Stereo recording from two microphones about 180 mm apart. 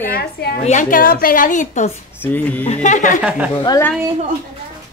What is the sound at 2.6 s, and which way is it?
Speech, 40° left (ahead or behind).